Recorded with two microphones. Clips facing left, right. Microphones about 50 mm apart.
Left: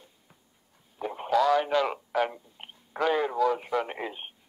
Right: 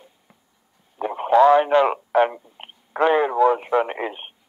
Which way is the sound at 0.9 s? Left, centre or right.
Right.